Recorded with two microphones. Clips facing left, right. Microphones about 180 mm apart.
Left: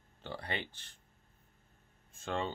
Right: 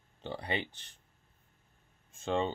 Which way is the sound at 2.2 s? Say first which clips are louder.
Right 5 dB; 20° right (ahead or behind).